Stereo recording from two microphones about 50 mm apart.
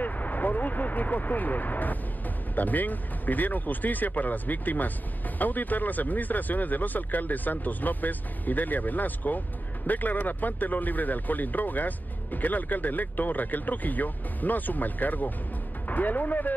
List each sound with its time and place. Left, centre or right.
0.0 s speech: left